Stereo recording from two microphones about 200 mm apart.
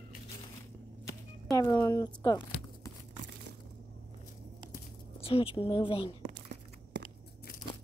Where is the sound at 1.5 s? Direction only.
10° left (ahead or behind).